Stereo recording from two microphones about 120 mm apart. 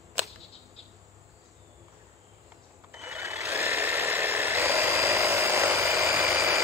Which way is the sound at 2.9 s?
25° right (ahead or behind).